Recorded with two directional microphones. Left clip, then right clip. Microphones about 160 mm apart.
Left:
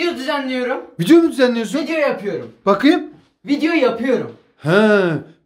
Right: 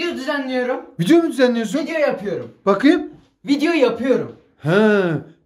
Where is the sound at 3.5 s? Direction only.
65° right (ahead or behind).